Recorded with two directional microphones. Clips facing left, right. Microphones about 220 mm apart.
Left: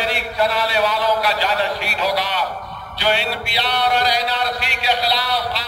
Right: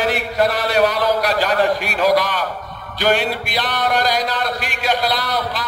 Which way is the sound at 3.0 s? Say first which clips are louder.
Right 3 dB; 50° right (ahead or behind).